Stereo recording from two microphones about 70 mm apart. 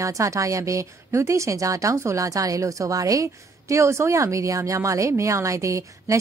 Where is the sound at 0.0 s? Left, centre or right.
Right.